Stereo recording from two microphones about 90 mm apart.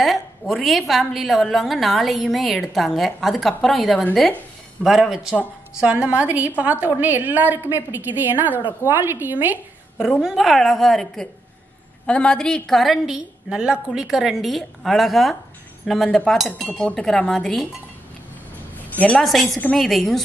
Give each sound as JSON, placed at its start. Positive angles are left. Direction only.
{"t": 0.0, "sound": "a woman's voice", "side_deg": 0}
{"t": 10.2, "sound": "a woman's voice", "side_deg": 0}
{"t": 18.9, "sound": "a woman's voice", "side_deg": 15}
{"t": 19.2, "sound": "a woman's voice", "side_deg": 0}